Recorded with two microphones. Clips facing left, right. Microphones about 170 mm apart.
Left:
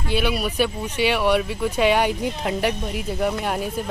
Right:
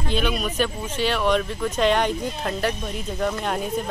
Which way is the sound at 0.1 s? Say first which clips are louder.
Left 2 dB; 10° left (ahead or behind).